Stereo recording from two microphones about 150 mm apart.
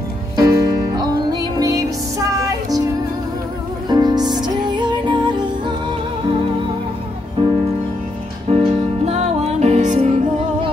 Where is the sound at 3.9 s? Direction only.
30° right (ahead or behind).